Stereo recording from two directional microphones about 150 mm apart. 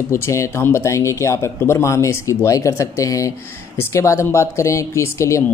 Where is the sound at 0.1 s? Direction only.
20° left (ahead or behind).